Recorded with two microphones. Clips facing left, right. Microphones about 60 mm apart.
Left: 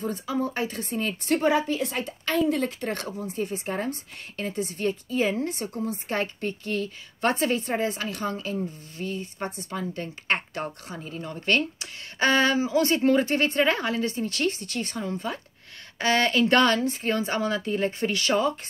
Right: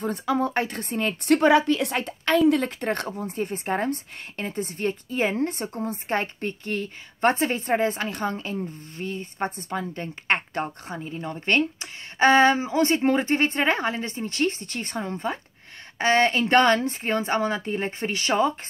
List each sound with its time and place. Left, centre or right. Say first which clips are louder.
0.0 s a woman's voice: right 3 dB; right